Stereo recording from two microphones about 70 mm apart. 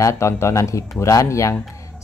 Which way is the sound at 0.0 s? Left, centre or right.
Left.